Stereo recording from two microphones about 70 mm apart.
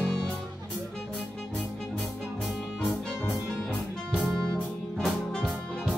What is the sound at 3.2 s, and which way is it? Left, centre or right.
Music, left.